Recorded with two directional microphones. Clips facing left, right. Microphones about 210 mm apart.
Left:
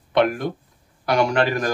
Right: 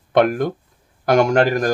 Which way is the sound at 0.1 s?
45° right (ahead or behind).